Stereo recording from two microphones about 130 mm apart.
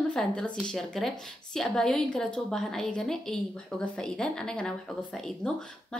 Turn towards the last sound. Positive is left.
turn(degrees=5)  # may be behind; listen again after turning